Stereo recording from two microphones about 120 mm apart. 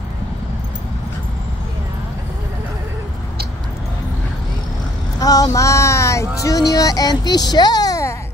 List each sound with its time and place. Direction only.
5.2 s speech: 30° left (ahead or behind)